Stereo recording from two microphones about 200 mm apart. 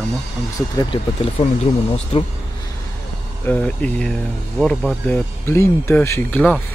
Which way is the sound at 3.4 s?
5° left (ahead or behind).